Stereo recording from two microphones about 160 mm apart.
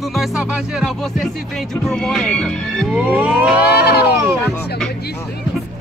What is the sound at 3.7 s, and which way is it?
Speech, 90° left.